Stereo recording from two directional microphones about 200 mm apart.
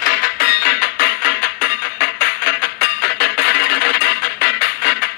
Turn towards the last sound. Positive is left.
turn(degrees=45)  # may be behind; listen again after turning